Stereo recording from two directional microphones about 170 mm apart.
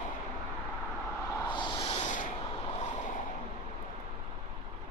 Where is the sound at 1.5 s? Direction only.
30° left (ahead or behind); by 2.2 s 45° left (ahead or behind).